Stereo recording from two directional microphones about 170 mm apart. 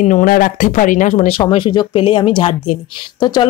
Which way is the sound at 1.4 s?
25° left (ahead or behind).